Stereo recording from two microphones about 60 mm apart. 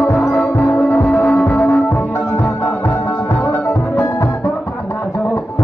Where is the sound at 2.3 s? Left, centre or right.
Left.